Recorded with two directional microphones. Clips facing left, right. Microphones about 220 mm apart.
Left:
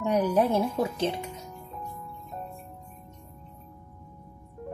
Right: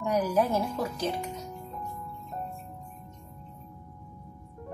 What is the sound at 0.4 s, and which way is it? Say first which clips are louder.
Speech: left 3 dB; 25° left (ahead or behind).